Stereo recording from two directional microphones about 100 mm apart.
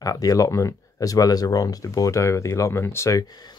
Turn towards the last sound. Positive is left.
turn(degrees=40)  # may be behind; listen again after turning